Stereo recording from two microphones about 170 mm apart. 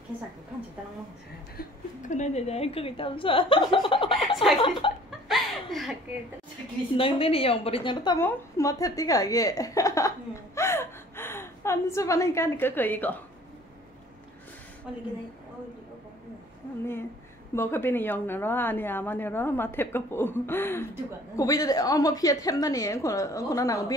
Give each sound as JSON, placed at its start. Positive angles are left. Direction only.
{"t": 1.6, "sound": "a woman's voice", "side_deg": 45}
{"t": 4.3, "sound": "speech", "side_deg": 0}
{"t": 4.6, "sound": "a woman's voice", "side_deg": 30}
{"t": 5.3, "sound": "chuckle", "side_deg": 0}
{"t": 7.0, "sound": "a woman's voice", "side_deg": 35}
{"t": 8.2, "sound": "a woman's voice", "side_deg": 15}
{"t": 17.6, "sound": "a woman's voice", "side_deg": 15}